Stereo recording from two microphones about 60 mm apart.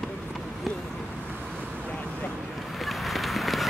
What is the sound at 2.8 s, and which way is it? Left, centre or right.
Run, centre.